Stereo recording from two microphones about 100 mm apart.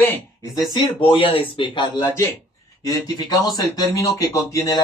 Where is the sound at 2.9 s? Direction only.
40° left (ahead or behind).